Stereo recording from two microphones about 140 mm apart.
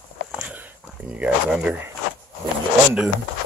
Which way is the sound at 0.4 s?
10° right (ahead or behind).